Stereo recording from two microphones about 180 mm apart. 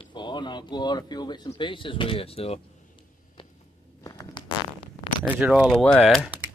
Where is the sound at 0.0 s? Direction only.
25° left (ahead or behind).